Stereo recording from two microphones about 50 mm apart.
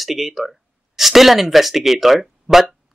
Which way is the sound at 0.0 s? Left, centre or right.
Centre.